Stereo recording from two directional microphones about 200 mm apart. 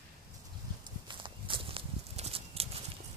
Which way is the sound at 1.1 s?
25° right (ahead or behind).